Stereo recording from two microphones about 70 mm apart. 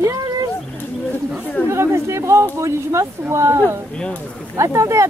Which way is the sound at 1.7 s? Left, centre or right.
Right.